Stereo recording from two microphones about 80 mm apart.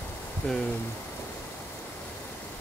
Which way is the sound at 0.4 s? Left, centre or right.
Centre.